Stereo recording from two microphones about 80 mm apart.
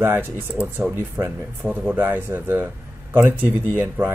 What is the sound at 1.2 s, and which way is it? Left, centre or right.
Speech, right.